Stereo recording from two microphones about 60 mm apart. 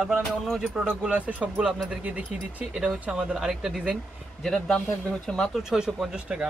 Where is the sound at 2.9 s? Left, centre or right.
Centre.